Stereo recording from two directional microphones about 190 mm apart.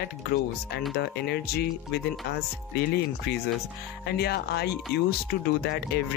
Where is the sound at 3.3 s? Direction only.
60° left (ahead or behind).